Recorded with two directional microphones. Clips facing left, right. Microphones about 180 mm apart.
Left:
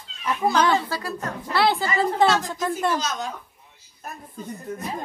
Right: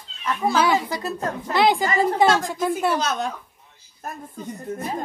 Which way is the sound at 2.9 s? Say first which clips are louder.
Right 3 dB; 60° right (ahead or behind).